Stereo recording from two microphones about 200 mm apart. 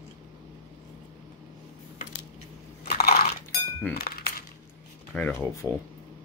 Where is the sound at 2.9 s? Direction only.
50° left (ahead or behind).